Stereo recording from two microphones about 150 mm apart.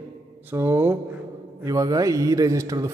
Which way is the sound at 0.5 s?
15° right (ahead or behind).